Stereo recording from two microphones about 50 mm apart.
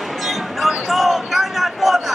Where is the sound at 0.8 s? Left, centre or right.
Centre.